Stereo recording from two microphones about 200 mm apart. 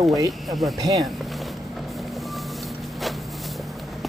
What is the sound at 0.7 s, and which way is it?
Speech, 20° right (ahead or behind).